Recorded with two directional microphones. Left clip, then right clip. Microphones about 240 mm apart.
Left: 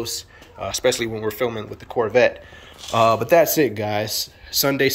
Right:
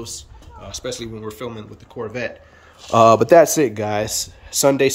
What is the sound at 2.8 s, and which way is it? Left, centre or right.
Speech, right.